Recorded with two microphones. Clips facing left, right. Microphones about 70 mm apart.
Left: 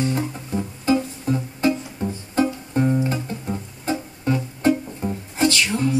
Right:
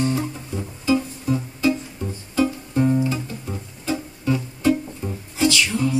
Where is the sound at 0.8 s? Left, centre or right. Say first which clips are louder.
Even; left.